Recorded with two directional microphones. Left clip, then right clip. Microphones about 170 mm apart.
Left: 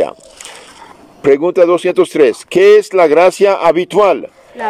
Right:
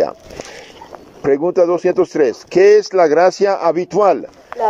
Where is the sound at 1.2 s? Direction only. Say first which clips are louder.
Left 4 dB; 30° left (ahead or behind).